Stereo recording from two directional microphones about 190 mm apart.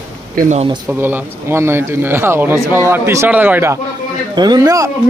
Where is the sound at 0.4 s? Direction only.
40° right (ahead or behind).